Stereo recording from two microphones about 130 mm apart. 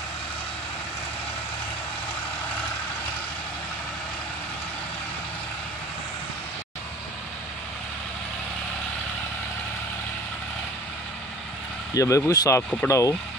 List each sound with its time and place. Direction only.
11.9 s speech: 25° left (ahead or behind)